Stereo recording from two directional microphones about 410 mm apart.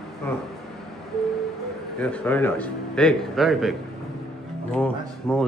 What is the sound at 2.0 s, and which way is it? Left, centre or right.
A man's voice, centre.